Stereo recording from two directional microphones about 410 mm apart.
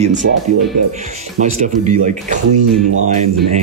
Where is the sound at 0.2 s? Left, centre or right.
Right.